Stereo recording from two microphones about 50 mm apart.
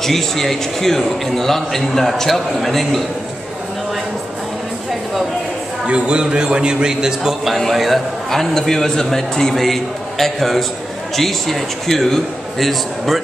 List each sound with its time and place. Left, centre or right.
0.0 s a man's voice: centre
5.9 s a man's voice: centre
7.5 s a man's voice: centre